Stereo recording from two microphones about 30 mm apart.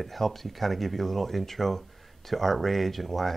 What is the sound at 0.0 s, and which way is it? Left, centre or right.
Speech, centre.